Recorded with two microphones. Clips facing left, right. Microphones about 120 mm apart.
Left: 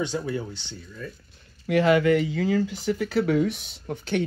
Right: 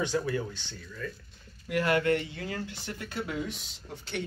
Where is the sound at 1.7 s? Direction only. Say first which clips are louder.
Left 7 dB; 90° left.